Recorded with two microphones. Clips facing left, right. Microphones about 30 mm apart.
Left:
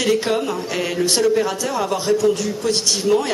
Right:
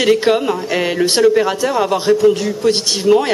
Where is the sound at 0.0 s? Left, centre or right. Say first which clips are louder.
Right 6 dB; right.